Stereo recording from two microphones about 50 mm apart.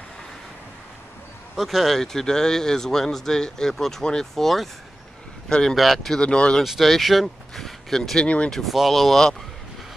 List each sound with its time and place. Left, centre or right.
1.6 s speech: centre
5.8 s speech: centre
6.1 s speech: left
6.6 s speech: centre